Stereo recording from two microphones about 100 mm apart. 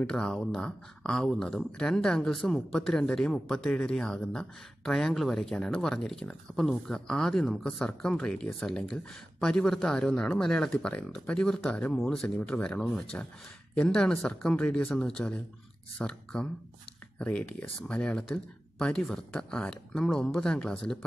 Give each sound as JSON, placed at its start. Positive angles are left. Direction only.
{"t": 0.0, "sound": "speech", "side_deg": 10}